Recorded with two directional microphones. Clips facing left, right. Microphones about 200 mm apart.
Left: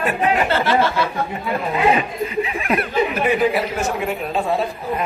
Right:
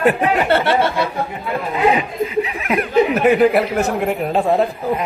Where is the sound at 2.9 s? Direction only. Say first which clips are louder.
Right 8 dB; 70° right (ahead or behind).